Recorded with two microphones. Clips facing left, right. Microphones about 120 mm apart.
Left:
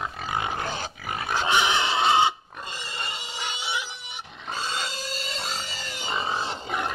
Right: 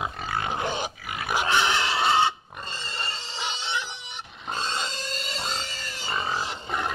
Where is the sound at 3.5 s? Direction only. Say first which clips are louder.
Even; 10° left (ahead or behind).